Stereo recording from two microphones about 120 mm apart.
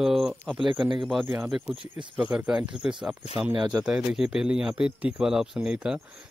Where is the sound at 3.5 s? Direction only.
40° right (ahead or behind).